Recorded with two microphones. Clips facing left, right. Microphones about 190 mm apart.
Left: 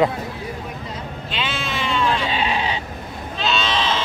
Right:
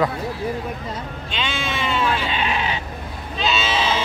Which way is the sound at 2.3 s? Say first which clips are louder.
Left 1 dB; 30° left (ahead or behind).